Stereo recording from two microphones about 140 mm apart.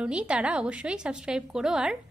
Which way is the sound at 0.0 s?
10° right (ahead or behind).